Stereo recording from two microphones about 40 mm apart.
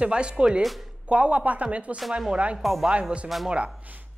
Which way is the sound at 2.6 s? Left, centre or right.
Centre.